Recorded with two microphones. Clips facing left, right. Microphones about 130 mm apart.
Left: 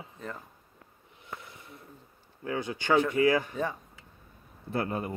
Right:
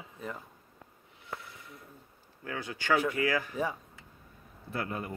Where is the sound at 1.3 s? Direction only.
25° left (ahead or behind).